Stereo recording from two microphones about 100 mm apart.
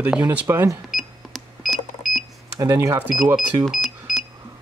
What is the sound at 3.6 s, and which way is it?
Cash register, 5° left (ahead or behind).